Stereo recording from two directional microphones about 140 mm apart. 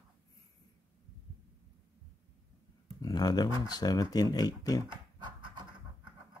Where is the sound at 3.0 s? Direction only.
25° left (ahead or behind).